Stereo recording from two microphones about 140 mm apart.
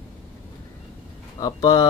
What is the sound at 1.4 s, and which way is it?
Speech, 25° left (ahead or behind).